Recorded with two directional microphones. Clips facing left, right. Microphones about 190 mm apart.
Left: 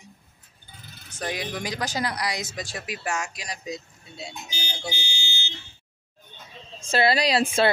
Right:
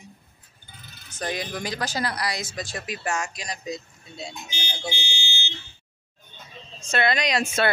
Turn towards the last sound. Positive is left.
turn(degrees=30)  # may be behind; listen again after turning